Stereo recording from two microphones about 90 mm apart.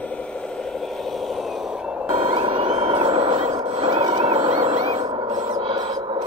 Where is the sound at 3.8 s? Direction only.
65° right (ahead or behind).